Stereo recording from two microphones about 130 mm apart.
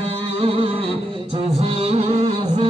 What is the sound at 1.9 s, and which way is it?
Music, 55° right (ahead or behind).